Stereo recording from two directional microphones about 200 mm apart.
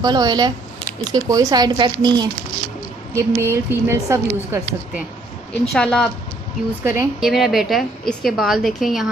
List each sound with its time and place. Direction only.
0.0 s speech: 20° right (ahead or behind)
5.7 s a woman's voice: 5° left (ahead or behind)
6.8 s a woman's voice: 10° right (ahead or behind)